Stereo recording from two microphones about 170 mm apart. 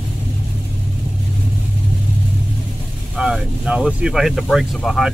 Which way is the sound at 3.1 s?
5° right (ahead or behind).